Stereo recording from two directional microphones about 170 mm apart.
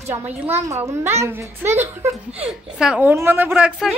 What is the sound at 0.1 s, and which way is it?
A woman's voice, 10° right (ahead or behind).